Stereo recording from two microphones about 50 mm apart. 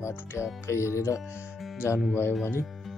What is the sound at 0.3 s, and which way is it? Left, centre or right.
Music, left.